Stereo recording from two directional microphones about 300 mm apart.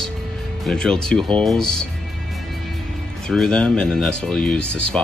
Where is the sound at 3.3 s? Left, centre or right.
Centre.